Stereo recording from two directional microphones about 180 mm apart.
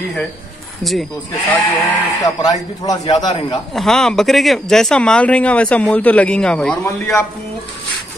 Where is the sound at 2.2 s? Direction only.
20° left (ahead or behind).